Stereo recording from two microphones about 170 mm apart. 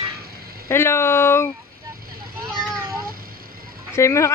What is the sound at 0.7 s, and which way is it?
Speech, 15° left (ahead or behind).